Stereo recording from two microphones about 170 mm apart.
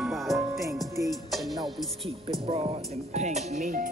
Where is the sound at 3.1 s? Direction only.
40° right (ahead or behind).